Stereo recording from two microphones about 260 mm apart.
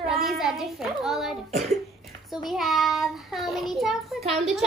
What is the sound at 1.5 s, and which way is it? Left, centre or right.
Speech, right.